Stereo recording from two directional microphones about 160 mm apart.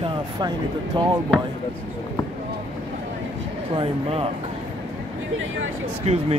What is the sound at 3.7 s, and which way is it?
Speech, 35° right (ahead or behind).